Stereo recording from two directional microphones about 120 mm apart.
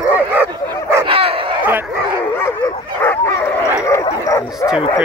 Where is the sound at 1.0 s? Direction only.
50° right (ahead or behind).